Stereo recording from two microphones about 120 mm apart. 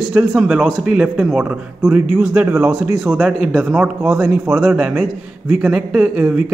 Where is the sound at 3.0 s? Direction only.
5° right (ahead or behind).